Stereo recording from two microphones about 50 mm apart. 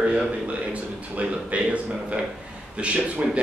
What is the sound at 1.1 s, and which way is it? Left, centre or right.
Speech, right.